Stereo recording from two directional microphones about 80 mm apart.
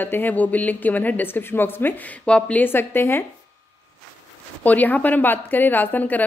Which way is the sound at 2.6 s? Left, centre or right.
Left.